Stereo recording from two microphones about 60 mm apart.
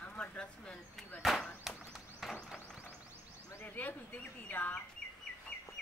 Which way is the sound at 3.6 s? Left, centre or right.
Left.